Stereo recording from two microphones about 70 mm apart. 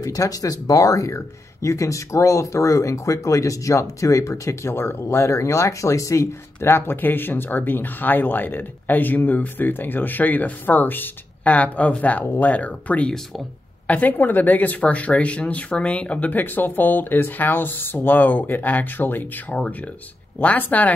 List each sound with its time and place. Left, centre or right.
0.0 s speech: left